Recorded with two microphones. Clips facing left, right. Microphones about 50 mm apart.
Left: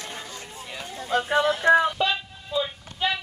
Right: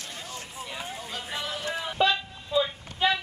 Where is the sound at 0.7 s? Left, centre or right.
Centre.